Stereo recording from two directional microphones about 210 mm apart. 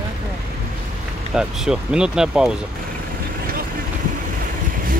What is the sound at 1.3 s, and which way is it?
Speech, 5° right (ahead or behind).